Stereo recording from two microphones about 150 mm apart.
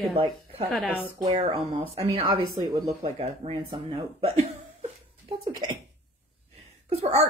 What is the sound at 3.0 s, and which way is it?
Speech, 40° right (ahead or behind).